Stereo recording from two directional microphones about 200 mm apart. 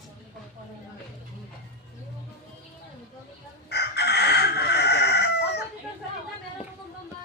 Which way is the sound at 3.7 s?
55° left (ahead or behind).